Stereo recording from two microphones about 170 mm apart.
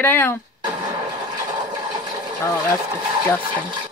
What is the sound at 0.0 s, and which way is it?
Speech, 15° left (ahead or behind).